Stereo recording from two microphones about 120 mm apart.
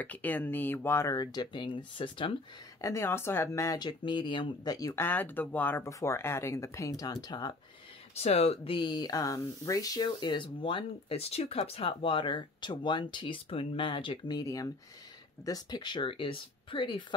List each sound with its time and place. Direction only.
0.0 s speech: 15° left (ahead or behind)
1.1 s speech: 35° left (ahead or behind)
2.8 s speech: 20° left (ahead or behind)
3.8 s speech: 40° left (ahead or behind)
4.7 s speech: 30° left (ahead or behind)
5.0 s speech: 15° left (ahead or behind); by 7.5 s 35° left (ahead or behind)
8.1 s speech: 65° left (ahead or behind); by 17.0 s 45° left (ahead or behind)